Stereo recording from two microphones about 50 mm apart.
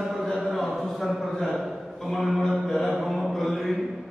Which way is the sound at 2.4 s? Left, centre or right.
Centre.